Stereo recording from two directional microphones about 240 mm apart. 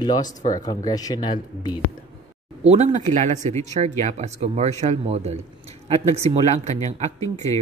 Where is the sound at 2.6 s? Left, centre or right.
Right.